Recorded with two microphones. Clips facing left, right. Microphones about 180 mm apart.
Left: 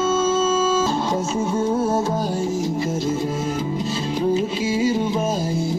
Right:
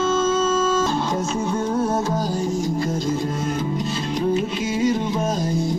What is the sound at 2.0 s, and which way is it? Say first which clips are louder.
Music: left 1 dB; 25° left (ahead or behind).